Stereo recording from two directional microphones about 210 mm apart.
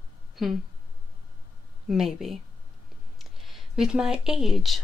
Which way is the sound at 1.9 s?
Centre (ahead or behind).